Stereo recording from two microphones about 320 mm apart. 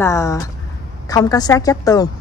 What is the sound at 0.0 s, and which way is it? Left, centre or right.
A woman's voice, centre.